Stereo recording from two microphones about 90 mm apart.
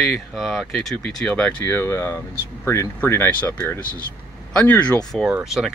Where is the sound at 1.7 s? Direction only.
30° left (ahead or behind).